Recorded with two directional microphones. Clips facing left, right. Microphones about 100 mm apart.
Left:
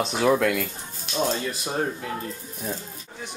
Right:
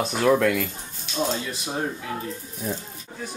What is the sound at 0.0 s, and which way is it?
Speech, centre (ahead or behind).